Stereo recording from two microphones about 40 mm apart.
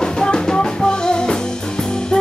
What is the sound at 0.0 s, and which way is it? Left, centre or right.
Music, centre.